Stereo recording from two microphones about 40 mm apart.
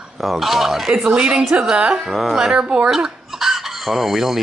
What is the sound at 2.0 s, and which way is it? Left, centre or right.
Speech, centre.